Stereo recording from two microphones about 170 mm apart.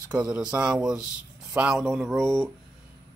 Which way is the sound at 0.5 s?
5° right (ahead or behind).